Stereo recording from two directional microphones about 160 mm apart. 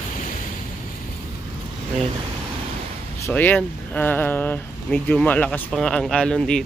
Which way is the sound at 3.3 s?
10° left (ahead or behind).